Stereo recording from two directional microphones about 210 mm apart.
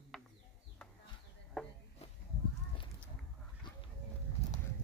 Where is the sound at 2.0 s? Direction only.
30° left (ahead or behind).